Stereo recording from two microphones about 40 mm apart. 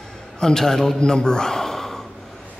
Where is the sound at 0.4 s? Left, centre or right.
Centre.